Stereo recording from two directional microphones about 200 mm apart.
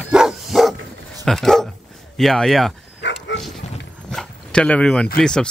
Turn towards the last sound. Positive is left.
turn(degrees=5)  # may be behind; listen again after turning